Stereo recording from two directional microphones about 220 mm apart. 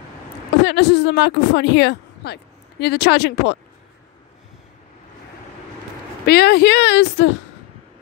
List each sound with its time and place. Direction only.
0.6 s a woman's voice: 50° left (ahead or behind)
6.2 s speech: 45° left (ahead or behind)